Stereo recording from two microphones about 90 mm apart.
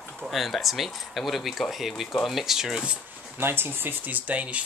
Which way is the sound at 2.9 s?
25° right (ahead or behind).